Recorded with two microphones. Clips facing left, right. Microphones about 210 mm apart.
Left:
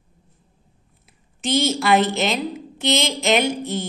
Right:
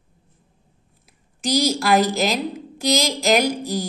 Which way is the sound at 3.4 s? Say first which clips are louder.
Even; 35° right (ahead or behind).